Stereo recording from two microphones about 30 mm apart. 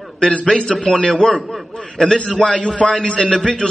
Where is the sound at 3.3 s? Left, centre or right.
Centre.